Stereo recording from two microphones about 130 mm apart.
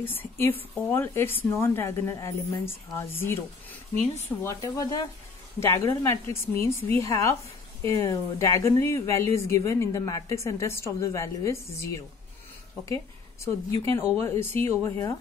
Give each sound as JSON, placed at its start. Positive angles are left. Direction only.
{"t": 0.0, "sound": "speech", "side_deg": 15}